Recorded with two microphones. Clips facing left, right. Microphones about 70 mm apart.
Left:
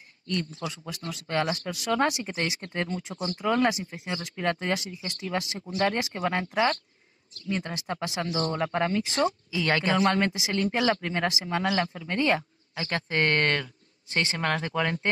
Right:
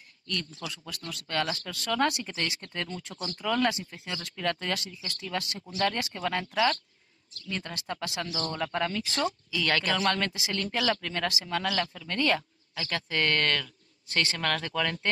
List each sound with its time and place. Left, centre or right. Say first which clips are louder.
0.3 s speech: left 5 dB; left